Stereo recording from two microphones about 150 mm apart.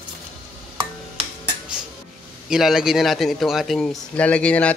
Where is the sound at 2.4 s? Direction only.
Centre (ahead or behind).